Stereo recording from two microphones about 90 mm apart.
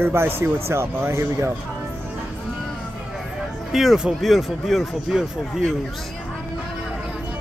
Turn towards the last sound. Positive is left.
turn(degrees=0)  # may be behind; listen again after turning